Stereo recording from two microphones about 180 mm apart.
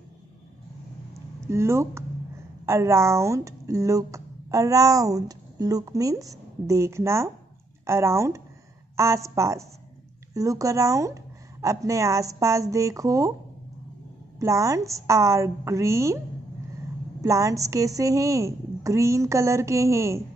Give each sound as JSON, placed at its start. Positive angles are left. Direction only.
{"t": 1.5, "sound": "a woman's voice", "side_deg": -15}
{"t": 14.4, "sound": "a woman's voice", "side_deg": -15}
{"t": 17.2, "sound": "a woman's voice", "side_deg": -20}